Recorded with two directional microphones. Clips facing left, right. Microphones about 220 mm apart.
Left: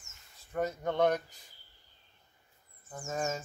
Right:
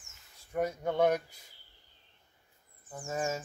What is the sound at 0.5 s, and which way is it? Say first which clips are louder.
Speech: right 1 dB; 10° right (ahead or behind).